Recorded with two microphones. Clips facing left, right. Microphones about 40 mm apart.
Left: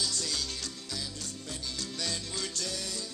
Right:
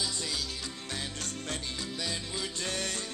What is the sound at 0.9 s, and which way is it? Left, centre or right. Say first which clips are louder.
Music: right 4 dB; right.